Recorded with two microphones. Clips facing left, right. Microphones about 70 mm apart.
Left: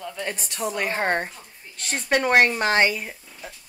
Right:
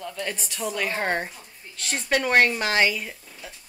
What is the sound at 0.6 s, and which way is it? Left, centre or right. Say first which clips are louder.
A woman's voice: left 2 dB; centre.